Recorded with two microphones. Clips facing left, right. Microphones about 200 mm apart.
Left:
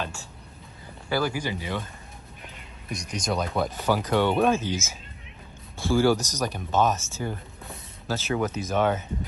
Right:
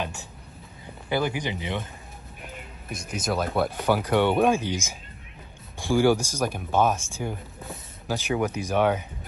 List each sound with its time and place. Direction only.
0.0 s speech: 20° right (ahead or behind)
2.9 s speech: 5° right (ahead or behind)